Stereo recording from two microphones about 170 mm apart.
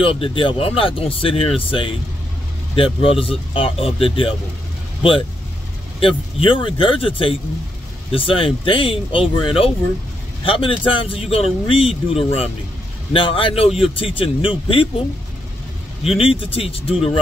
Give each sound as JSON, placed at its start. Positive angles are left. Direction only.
{"t": 0.0, "sound": "speech", "side_deg": 30}
{"t": 5.9, "sound": "speech", "side_deg": 30}
{"t": 16.0, "sound": "speech", "side_deg": 35}